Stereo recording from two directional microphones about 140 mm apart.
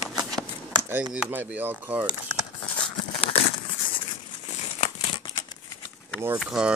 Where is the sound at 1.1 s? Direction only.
10° right (ahead or behind).